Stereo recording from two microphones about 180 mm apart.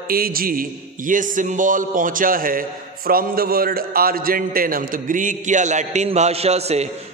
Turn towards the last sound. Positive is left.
turn(degrees=-35)  # may be behind; listen again after turning